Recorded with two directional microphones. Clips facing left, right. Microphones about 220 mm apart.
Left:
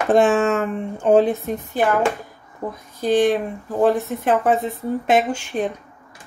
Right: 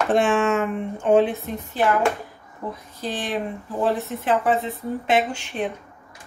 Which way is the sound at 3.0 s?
45° left (ahead or behind).